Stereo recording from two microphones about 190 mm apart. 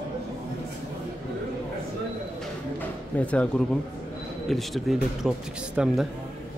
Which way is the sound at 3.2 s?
5° left (ahead or behind).